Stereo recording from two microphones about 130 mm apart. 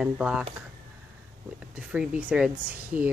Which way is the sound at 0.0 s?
10° right (ahead or behind).